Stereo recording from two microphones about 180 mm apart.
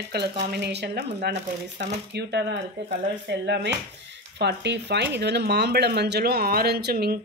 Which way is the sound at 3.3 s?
70° right (ahead or behind).